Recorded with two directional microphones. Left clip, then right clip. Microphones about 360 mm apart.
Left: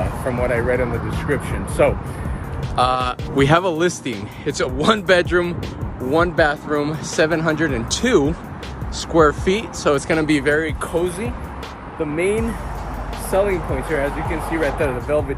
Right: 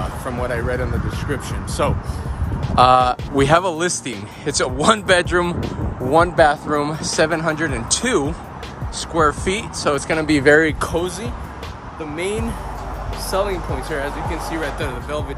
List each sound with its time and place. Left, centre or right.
1.3 s speech: centre
2.7 s speech: right
3.1 s speech: centre; by 11.1 s right
12.2 s speech: centre
14.6 s speech: centre